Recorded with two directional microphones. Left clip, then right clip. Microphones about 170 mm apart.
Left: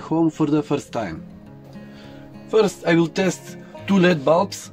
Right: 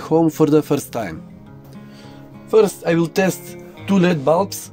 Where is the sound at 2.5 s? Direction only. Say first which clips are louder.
Right 3 dB; 55° right (ahead or behind).